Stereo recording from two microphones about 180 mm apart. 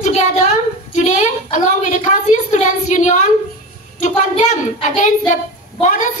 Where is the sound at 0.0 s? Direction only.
40° left (ahead or behind).